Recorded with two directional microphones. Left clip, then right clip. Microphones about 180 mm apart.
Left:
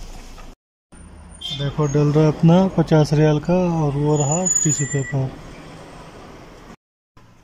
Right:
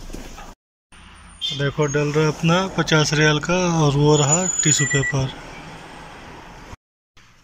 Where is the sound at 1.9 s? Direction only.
25° left (ahead or behind).